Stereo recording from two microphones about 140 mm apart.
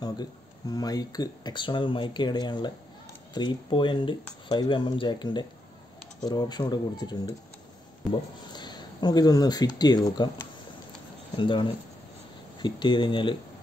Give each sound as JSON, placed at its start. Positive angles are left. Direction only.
{"t": 0.0, "sound": "speech", "side_deg": 25}
{"t": 8.5, "sound": "speech", "side_deg": 30}
{"t": 11.3, "sound": "speech", "side_deg": 35}